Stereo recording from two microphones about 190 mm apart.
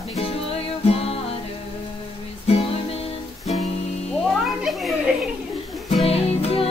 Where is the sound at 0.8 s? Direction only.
30° left (ahead or behind).